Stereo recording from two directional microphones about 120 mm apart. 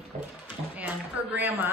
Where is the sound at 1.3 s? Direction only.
15° right (ahead or behind).